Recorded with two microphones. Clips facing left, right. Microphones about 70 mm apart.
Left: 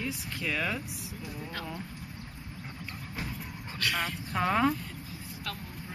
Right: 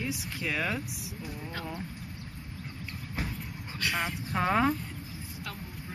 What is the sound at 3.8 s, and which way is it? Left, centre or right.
Speech, centre.